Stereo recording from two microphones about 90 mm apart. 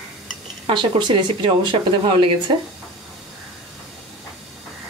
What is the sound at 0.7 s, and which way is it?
Speech, 60° right (ahead or behind).